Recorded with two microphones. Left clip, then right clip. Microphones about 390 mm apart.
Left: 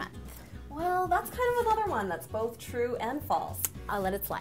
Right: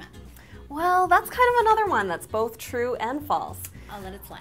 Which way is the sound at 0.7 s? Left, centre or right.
Right.